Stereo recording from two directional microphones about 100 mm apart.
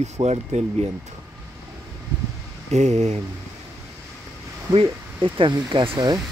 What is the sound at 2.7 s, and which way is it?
Speech, 90° right.